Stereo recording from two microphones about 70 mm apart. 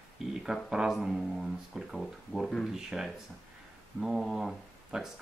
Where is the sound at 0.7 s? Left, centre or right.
Centre.